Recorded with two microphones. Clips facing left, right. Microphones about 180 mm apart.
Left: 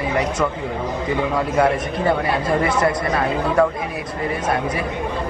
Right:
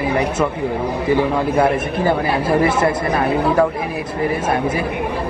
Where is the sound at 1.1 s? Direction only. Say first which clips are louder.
Right 5 dB; 30° right (ahead or behind).